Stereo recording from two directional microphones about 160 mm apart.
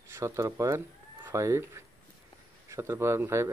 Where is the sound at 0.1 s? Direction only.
20° right (ahead or behind).